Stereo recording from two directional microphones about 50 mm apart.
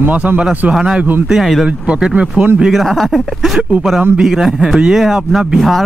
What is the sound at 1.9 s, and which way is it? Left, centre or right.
Speech, centre.